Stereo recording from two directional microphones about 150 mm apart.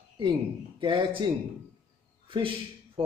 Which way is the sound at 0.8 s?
35° right (ahead or behind).